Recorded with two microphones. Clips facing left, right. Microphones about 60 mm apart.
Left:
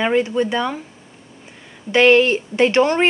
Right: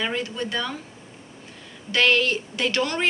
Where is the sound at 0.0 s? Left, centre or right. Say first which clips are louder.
Left 10 dB; left.